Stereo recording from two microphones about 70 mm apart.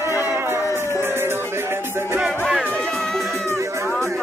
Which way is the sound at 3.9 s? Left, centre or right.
Centre.